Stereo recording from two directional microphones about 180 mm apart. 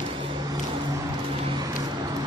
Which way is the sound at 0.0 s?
30° right (ahead or behind).